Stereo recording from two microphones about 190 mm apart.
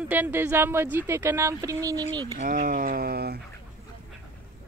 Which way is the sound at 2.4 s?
45° right (ahead or behind).